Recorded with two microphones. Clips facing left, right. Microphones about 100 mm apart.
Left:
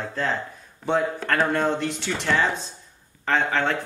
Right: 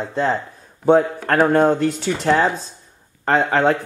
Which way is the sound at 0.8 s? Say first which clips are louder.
Right 8 dB; 40° right (ahead or behind).